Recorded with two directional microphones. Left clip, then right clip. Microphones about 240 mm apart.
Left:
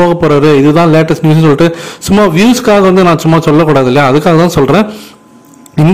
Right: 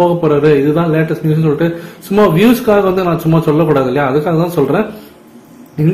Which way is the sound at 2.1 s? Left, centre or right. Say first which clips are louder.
Left 2 dB; left.